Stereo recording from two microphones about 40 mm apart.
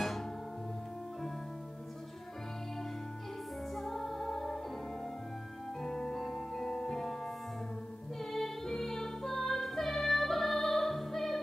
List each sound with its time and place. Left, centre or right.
3.7 s music: centre
5.8 s music: centre